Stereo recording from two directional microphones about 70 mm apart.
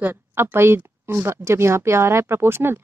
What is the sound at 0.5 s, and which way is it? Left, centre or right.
Speech, right.